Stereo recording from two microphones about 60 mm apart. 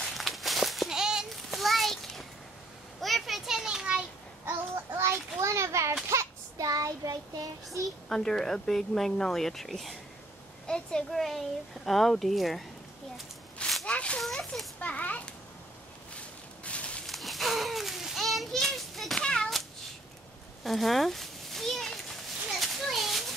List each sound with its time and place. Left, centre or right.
0.0 s a sound: centre
1.3 s children playing: centre
4.5 s a sound: right
6.0 s child singing: right
6.7 s child singing: right
7.8 s speech: centre
10.7 s speech: centre
13.8 s a child's voice: left
14.4 s speech: centre
14.8 s a child's voice: left
16.2 s a sound: centre
17.0 s children playing: centre
19.2 s cat: centre
20.6 s children playing: centre